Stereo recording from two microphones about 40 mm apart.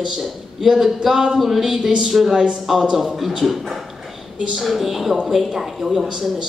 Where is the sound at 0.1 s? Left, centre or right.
Centre.